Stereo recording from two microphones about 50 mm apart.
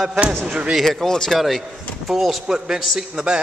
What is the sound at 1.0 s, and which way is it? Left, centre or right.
Speech, centre.